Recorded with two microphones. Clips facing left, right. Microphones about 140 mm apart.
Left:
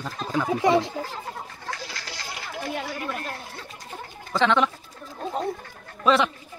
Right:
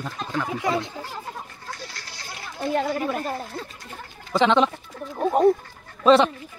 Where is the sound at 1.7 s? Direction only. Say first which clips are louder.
Left 2 dB; 90° left.